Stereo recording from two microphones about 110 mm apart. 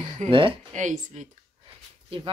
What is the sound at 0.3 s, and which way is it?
Speech, 50° right (ahead or behind).